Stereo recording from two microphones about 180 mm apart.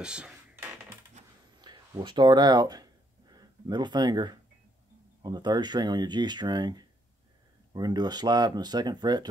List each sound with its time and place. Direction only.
0.0 s dishes: 5° right (ahead or behind)
1.6 s a sound: 25° right (ahead or behind)
5.2 s speech: 25° right (ahead or behind)